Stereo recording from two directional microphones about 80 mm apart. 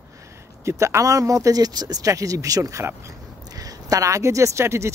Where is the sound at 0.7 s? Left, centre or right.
Right.